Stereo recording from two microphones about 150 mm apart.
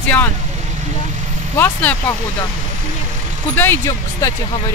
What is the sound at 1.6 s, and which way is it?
Speech, 10° left (ahead or behind).